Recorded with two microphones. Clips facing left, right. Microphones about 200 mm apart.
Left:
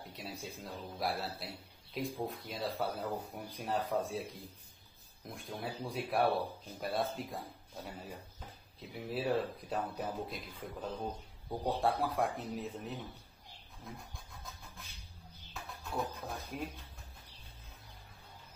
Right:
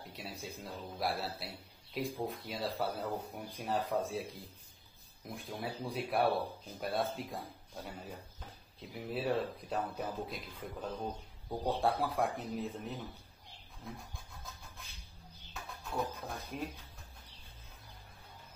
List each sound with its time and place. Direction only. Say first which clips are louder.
0.0 s speech: even; centre (ahead or behind)
15.5 s speech: even; centre (ahead or behind)